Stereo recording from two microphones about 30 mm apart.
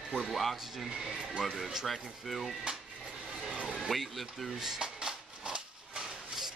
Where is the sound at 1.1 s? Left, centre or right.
Right.